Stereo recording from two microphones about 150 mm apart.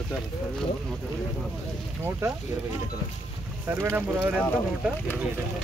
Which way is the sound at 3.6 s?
15° right (ahead or behind).